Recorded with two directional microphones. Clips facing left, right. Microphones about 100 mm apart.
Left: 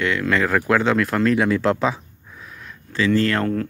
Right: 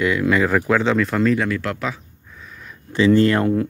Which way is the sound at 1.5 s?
25° left (ahead or behind).